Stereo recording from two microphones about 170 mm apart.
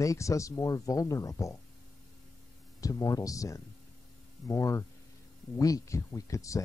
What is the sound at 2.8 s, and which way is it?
Speech, 20° left (ahead or behind).